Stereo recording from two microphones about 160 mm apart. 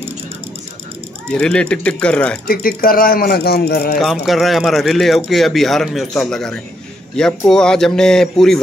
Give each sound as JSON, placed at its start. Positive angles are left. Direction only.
{"t": 1.3, "sound": "speech", "side_deg": 5}
{"t": 2.4, "sound": "speech", "side_deg": 65}
{"t": 4.0, "sound": "speech", "side_deg": 0}